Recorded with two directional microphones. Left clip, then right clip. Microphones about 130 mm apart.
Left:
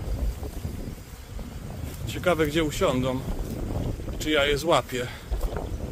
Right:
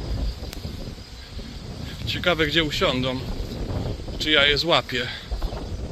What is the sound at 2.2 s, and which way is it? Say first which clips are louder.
Speech: right 2 dB; 20° left (ahead or behind).